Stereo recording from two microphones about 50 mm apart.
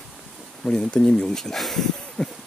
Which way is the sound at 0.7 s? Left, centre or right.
Centre.